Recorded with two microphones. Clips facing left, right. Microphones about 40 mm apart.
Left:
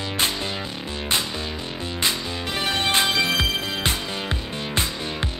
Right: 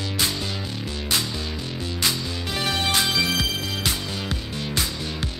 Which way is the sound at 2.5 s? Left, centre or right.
Left.